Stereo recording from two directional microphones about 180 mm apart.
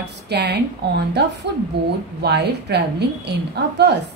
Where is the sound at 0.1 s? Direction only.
70° right (ahead or behind).